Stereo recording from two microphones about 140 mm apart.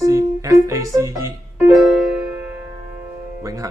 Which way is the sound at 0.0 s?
20° right (ahead or behind).